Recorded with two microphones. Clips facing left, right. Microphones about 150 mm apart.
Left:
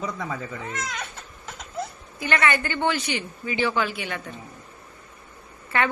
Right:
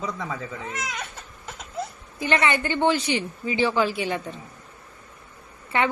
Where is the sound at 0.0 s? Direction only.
Centre (ahead or behind).